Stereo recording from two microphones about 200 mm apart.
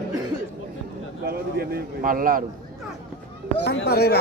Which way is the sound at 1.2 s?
50° right (ahead or behind).